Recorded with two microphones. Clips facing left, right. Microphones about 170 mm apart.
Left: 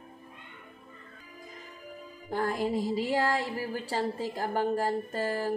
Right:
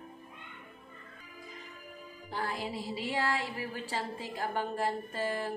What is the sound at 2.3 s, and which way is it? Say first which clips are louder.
Music: left 7 dB; 45° left (ahead or behind).